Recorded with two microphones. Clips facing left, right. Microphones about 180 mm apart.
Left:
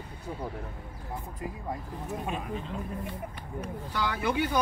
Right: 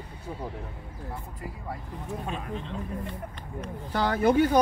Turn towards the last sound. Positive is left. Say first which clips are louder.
# right 7 dB
turn(degrees=-40)  # may be behind; listen again after turning